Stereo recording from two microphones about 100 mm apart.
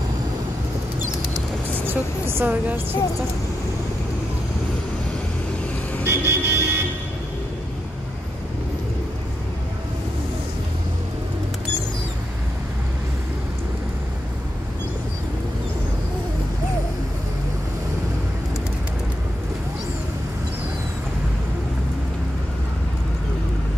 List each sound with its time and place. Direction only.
1.7 s speech: 25° right (ahead or behind)
6.0 s vehicle: 25° right (ahead or behind)